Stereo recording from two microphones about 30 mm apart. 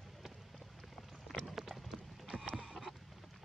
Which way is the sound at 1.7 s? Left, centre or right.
Centre.